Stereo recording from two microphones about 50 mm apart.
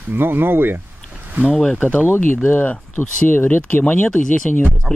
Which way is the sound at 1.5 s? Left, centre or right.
Centre.